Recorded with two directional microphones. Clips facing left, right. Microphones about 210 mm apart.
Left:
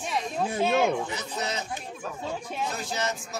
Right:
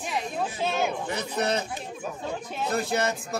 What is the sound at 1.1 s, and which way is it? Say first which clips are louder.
Speech: right 5 dB; 60° right (ahead or behind).